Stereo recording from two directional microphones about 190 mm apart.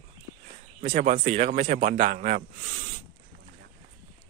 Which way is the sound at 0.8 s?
40° right (ahead or behind).